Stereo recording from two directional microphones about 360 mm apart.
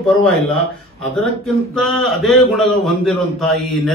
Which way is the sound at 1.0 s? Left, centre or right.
Centre.